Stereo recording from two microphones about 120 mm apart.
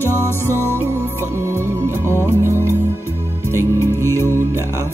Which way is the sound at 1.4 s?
20° right (ahead or behind).